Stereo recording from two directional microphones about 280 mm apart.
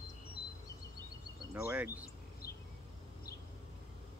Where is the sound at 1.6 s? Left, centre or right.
Centre.